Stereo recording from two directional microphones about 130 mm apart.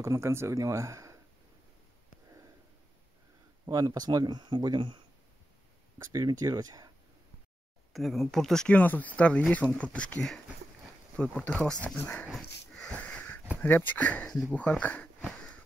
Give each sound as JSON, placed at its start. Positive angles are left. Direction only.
{"t": 0.0, "sound": "speech", "side_deg": -20}
{"t": 3.6, "sound": "speech", "side_deg": -30}
{"t": 6.4, "sound": "speech", "side_deg": -30}
{"t": 7.9, "sound": "speech", "side_deg": 0}
{"t": 12.3, "sound": "wheeze", "side_deg": 0}
{"t": 13.6, "sound": "speech", "side_deg": 15}